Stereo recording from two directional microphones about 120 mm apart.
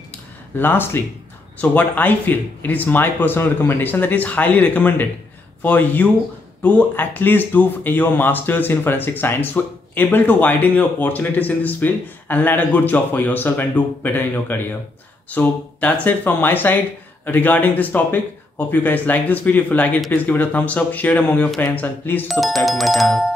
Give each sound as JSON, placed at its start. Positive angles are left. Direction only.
{"t": 0.6, "sound": "speech", "side_deg": 20}
{"t": 22.3, "sound": "music", "side_deg": 0}